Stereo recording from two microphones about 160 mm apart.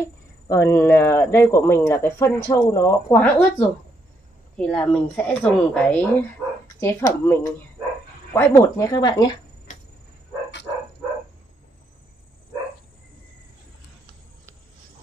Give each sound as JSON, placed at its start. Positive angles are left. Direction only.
{"t": 0.0, "sound": "speech", "side_deg": 15}
{"t": 3.2, "sound": "speech", "side_deg": 10}